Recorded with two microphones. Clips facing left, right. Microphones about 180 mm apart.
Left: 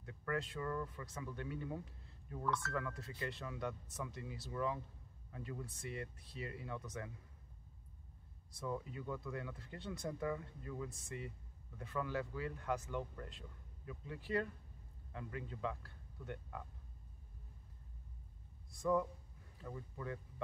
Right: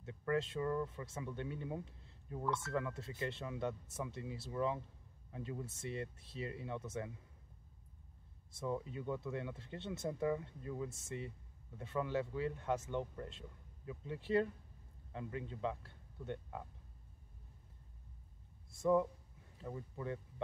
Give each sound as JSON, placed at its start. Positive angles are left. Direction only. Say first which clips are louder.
{"t": 0.0, "sound": "speech", "louder": "right 4 dB", "side_deg": -25}
{"t": 8.5, "sound": "speech", "louder": "right 3 dB", "side_deg": -25}
{"t": 18.8, "sound": "speech", "louder": "right 3 dB", "side_deg": -25}